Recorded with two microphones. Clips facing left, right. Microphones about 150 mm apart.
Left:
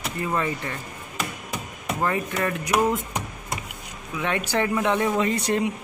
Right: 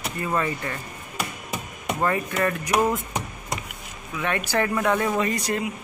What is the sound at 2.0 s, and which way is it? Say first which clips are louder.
Speech: right 1 dB; 10° left (ahead or behind).